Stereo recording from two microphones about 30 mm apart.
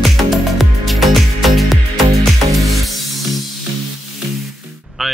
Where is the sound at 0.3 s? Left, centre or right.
Centre.